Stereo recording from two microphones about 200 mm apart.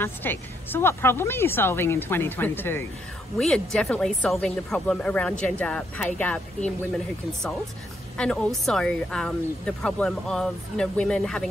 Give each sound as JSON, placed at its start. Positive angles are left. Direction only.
{"t": 0.0, "sound": "speech", "side_deg": 10}
{"t": 8.2, "sound": "speech", "side_deg": 0}